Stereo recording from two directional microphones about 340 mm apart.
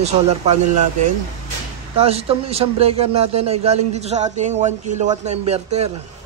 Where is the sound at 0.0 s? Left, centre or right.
Centre.